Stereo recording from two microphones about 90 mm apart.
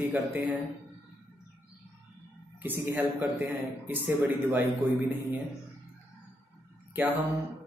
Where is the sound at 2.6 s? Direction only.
20° right (ahead or behind).